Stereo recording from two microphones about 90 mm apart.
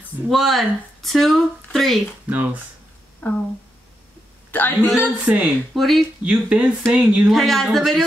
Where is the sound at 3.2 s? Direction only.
20° left (ahead or behind).